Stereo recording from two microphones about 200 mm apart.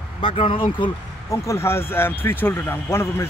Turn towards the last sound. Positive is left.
turn(degrees=10)  # may be behind; listen again after turning